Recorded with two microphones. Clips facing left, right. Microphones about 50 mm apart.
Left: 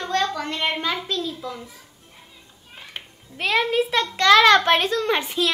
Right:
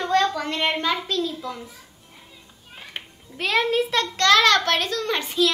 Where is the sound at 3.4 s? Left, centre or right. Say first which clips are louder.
Left 1 dB; centre.